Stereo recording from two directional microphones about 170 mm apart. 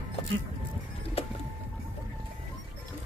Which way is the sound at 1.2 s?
35° left (ahead or behind).